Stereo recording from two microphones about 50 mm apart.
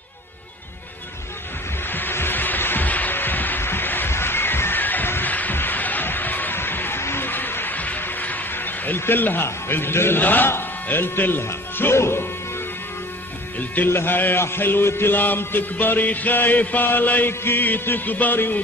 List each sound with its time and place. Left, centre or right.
1.9 s music: left
10.2 s music: left
10.5 s speech: left
11.9 s music: left
13.8 s a man's voice: left
14.4 s music: left
17.3 s music: left